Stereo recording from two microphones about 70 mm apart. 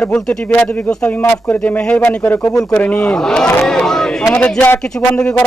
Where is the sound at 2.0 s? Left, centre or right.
Left.